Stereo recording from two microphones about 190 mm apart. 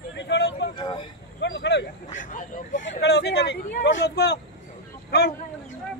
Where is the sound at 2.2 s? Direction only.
45° left (ahead or behind).